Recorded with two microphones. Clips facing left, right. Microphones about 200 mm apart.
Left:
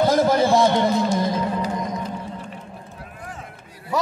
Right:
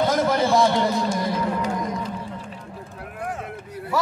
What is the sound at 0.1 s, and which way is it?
Speech, 30° left (ahead or behind).